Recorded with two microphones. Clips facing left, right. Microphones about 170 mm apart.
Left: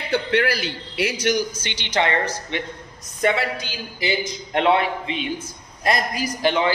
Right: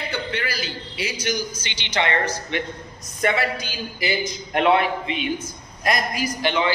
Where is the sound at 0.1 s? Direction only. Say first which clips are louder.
Left 11 dB; 75° left (ahead or behind).